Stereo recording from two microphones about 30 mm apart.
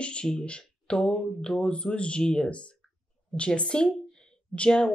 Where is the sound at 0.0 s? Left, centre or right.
Left.